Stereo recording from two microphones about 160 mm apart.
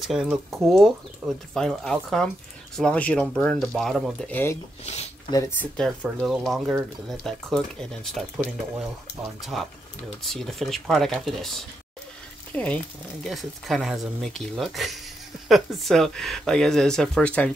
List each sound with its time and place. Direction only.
0.0 s speech: 5° right (ahead or behind)
4.3 s speech: 15° left (ahead or behind)
4.8 s speech: 45° left (ahead or behind)
5.6 s speech: 5° left (ahead or behind)
9.4 s speech: centre (ahead or behind)